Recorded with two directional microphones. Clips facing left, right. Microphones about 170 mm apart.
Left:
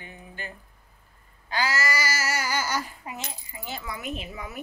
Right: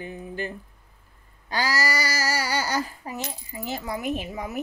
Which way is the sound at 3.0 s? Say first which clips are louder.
Right 4 dB; 40° right (ahead or behind).